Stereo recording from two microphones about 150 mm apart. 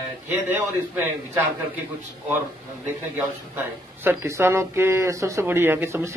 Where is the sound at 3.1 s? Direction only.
15° right (ahead or behind).